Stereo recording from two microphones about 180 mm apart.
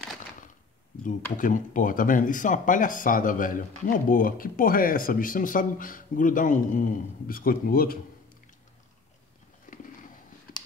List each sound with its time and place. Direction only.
1.3 s speech: 50° left (ahead or behind)